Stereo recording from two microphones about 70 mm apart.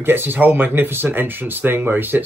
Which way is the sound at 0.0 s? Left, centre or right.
Right.